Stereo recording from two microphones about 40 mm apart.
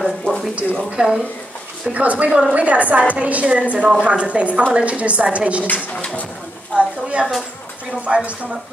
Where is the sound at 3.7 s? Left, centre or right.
Right.